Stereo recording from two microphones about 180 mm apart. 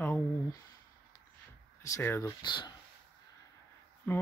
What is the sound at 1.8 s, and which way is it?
Speech, 15° left (ahead or behind).